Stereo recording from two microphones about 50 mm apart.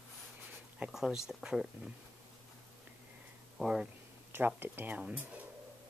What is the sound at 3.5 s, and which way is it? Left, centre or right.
Speech, centre.